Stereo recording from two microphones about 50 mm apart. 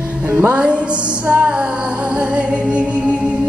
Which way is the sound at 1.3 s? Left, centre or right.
Right.